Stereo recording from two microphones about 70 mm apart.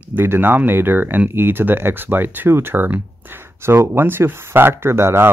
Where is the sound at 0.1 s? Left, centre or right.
Right.